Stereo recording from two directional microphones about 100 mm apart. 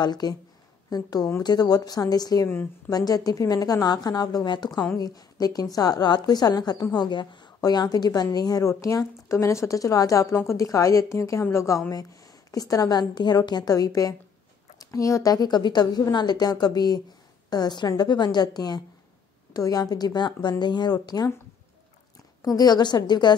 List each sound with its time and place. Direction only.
0.0 s a woman's voice: 45° left (ahead or behind)
2.4 s a woman's voice: 20° left (ahead or behind)
2.9 s a woman's voice: 40° left (ahead or behind)
22.4 s a woman's voice: 40° left (ahead or behind)